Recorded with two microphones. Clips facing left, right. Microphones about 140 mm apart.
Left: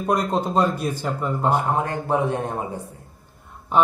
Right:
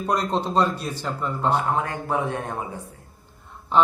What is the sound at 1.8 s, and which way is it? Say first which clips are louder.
Speech: left 3 dB; 30° left (ahead or behind).